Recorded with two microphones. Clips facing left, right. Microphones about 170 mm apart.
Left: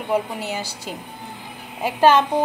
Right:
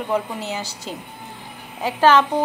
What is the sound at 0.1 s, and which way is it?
Speech, 10° left (ahead or behind).